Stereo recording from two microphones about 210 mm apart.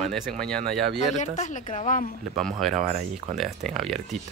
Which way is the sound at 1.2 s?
35° left (ahead or behind).